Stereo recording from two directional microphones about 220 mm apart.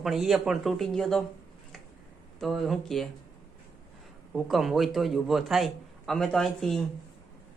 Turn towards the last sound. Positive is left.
turn(degrees=0)  # may be behind; listen again after turning